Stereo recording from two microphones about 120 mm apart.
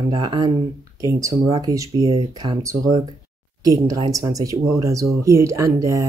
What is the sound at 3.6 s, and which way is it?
Speech, 30° right (ahead or behind).